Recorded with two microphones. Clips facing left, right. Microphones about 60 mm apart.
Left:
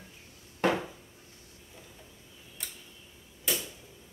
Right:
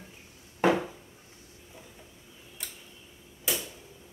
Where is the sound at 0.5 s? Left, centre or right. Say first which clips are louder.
Right 3 dB; centre.